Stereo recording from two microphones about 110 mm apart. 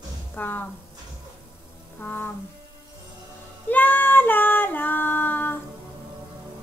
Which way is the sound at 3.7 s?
15° left (ahead or behind).